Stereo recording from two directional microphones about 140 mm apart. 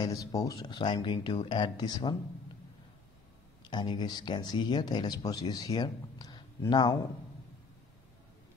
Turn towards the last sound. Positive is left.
turn(degrees=30)  # may be behind; listen again after turning